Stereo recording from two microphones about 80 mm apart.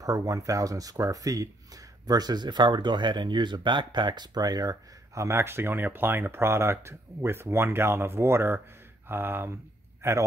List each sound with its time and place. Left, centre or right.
0.0 s a man's voice: right